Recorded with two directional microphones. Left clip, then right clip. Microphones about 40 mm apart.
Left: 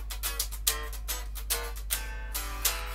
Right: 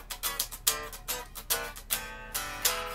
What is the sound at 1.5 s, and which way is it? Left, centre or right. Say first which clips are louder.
Music: right 1 dB; right.